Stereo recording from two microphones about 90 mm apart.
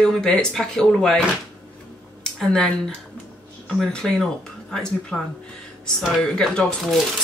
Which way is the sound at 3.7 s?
5° left (ahead or behind).